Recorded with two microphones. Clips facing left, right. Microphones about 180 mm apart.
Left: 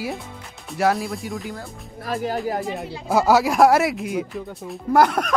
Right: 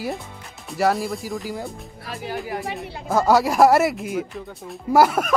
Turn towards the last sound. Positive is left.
turn(degrees=-5)  # may be behind; listen again after turning